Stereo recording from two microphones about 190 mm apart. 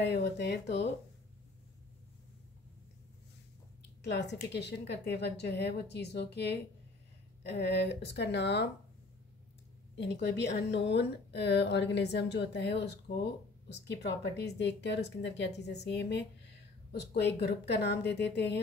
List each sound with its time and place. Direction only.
0.0 s a woman's voice: 60° left (ahead or behind)
4.0 s a woman's voice: 65° left (ahead or behind)
9.9 s a woman's voice: 65° left (ahead or behind)